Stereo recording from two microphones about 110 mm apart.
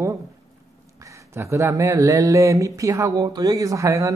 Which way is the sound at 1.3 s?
25° right (ahead or behind).